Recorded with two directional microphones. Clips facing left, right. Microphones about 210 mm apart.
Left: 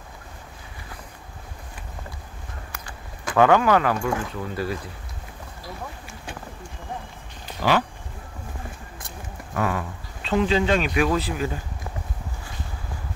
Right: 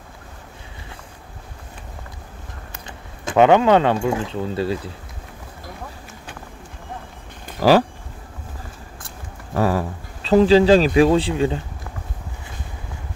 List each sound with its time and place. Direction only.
3.3 s speech: 20° right (ahead or behind)
7.6 s speech: 40° right (ahead or behind)
9.5 s speech: 35° right (ahead or behind)